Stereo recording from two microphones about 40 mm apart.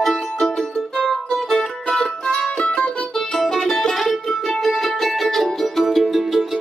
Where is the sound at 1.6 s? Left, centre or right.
Centre.